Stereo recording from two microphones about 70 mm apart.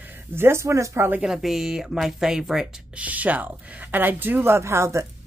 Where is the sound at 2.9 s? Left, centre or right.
Right.